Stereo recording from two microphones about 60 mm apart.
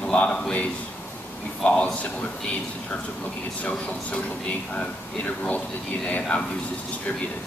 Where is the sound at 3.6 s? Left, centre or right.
Left.